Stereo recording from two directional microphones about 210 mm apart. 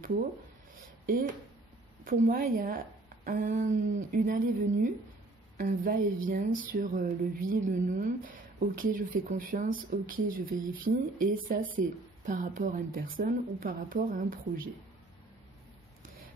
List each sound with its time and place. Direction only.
1.0 s speech: 40° right (ahead or behind)